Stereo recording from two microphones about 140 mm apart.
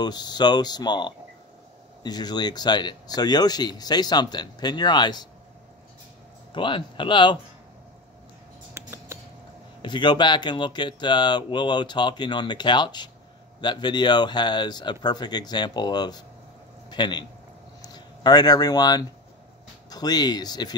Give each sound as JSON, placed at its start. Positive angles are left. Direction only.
{"t": 0.0, "sound": "speech", "side_deg": 30}
{"t": 6.5, "sound": "speech", "side_deg": 35}
{"t": 8.7, "sound": "a sound", "side_deg": -20}
{"t": 9.8, "sound": "speech", "side_deg": 35}